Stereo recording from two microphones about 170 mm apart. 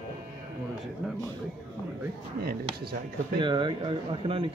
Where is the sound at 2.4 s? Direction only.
65° right (ahead or behind).